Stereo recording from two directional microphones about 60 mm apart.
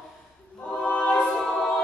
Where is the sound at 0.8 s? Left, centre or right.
Left.